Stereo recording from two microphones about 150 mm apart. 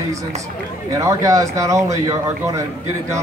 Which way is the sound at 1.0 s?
20° right (ahead or behind).